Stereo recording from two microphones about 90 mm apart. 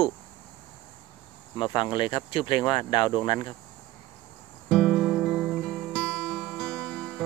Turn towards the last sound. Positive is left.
turn(degrees=5)  # may be behind; listen again after turning